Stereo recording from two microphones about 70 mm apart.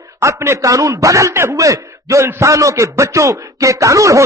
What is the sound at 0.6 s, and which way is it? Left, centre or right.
A man's voice, right.